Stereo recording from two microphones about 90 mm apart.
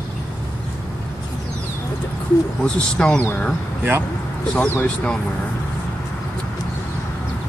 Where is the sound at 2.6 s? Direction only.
10° left (ahead or behind).